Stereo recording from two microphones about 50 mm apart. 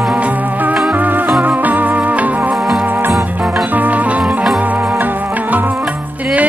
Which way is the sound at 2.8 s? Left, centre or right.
Right.